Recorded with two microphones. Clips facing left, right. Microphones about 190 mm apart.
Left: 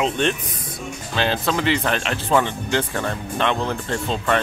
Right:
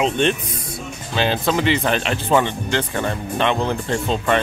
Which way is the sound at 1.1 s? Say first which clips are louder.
Right 2 dB; centre (ahead or behind).